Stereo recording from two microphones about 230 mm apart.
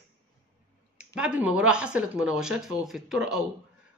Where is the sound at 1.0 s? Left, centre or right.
Centre.